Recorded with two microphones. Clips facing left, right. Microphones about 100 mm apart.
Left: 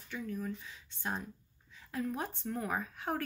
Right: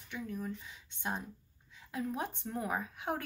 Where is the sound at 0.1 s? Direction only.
15° right (ahead or behind).